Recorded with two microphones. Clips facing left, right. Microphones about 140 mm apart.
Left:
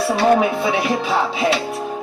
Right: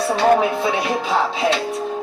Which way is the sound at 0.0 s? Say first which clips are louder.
Even; 5° left (ahead or behind).